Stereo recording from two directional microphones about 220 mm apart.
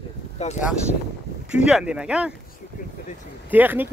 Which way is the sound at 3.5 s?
10° right (ahead or behind).